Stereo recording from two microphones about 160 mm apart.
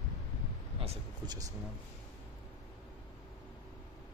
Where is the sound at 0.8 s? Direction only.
40° right (ahead or behind).